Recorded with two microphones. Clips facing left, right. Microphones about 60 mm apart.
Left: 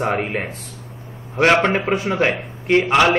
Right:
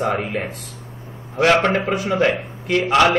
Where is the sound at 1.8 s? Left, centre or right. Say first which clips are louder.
Left 2 dB; left.